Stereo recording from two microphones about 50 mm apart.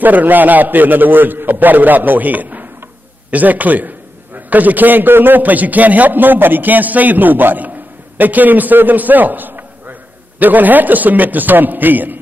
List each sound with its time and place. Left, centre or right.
0.0 s a man's voice: right